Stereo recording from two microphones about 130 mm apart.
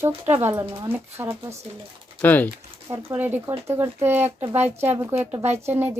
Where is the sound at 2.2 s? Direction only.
15° left (ahead or behind).